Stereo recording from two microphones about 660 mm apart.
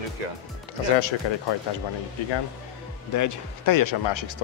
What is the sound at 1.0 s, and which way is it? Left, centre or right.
Speech, left.